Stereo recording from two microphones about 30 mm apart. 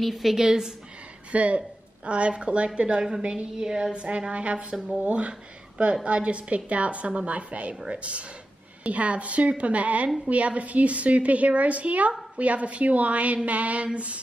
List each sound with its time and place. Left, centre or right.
0.0 s a woman's voice: centre
0.4 s a woman's voice: centre
1.3 s a woman's voice: right
3.5 s a woman's voice: right
3.9 s a woman's voice: right
8.8 s a woman's voice: right